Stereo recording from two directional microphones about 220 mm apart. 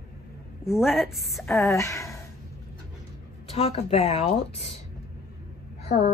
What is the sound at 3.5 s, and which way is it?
A woman's voice, 30° left (ahead or behind).